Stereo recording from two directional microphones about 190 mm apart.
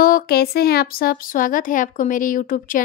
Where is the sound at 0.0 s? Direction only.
50° left (ahead or behind).